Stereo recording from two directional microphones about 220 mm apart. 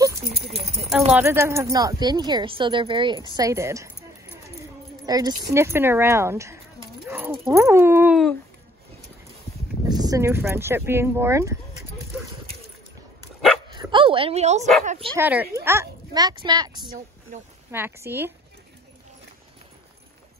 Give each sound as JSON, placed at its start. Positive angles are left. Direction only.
{"t": 1.1, "sound": "speech", "side_deg": -10}
{"t": 5.0, "sound": "speech", "side_deg": -15}
{"t": 7.1, "sound": "horse", "side_deg": -10}
{"t": 7.4, "sound": "speech", "side_deg": -10}
{"t": 9.8, "sound": "speech", "side_deg": -15}
{"t": 13.7, "sound": "speech", "side_deg": -20}
{"t": 15.1, "sound": "speech", "side_deg": -10}